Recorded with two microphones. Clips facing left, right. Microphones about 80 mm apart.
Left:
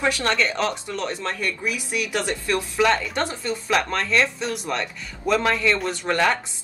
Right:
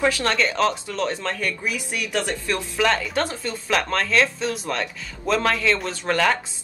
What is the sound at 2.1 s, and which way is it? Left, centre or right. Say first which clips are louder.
Speech: even; centre.